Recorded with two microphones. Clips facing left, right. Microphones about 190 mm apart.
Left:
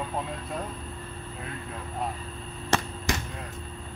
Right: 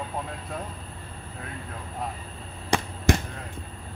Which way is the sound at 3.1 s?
55° right (ahead or behind).